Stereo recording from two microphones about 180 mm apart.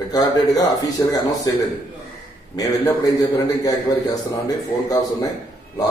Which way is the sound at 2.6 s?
20° left (ahead or behind).